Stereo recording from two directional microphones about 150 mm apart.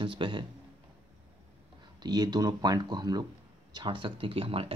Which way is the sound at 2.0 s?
30° right (ahead or behind).